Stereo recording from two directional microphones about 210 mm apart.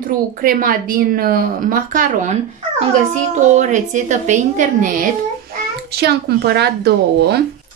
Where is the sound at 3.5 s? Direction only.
35° right (ahead or behind).